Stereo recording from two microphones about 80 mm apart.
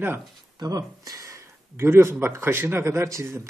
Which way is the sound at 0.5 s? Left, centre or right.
Right.